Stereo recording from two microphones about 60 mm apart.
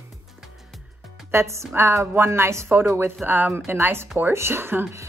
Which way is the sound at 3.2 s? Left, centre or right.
Right.